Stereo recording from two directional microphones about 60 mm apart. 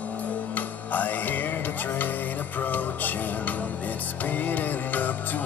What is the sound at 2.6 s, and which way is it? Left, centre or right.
Music, left.